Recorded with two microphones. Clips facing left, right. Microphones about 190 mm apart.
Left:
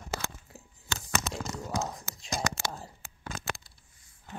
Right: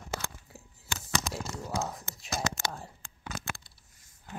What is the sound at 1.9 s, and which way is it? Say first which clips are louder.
Whispering: left 1 dB; centre (ahead or behind).